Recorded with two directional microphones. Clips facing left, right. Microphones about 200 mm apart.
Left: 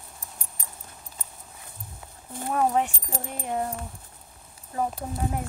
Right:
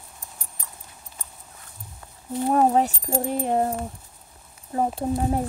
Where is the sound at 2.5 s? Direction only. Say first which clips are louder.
Right 4 dB; 35° right (ahead or behind).